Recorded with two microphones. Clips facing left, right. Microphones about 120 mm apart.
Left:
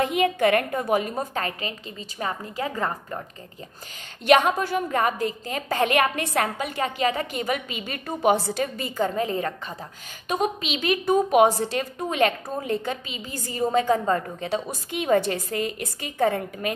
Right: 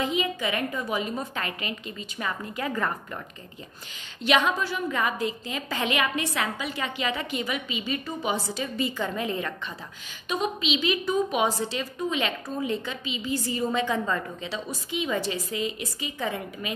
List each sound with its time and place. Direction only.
0.0 s a woman's voice: 55° left (ahead or behind); by 3.2 s 30° left (ahead or behind)
4.2 s a woman's voice: 50° left (ahead or behind)